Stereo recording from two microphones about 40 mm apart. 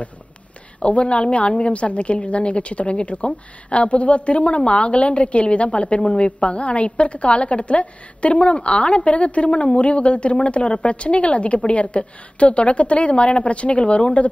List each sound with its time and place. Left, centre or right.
0.7 s a woman's voice: left